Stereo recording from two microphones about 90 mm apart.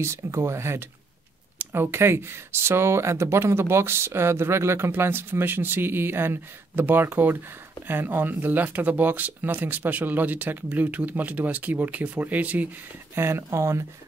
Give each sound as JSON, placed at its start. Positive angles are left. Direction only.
{"t": 0.0, "sound": "speech", "side_deg": -30}
{"t": 13.1, "sound": "speech", "side_deg": -30}